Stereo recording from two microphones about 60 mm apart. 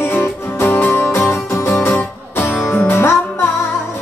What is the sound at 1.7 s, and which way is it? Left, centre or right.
Music, left.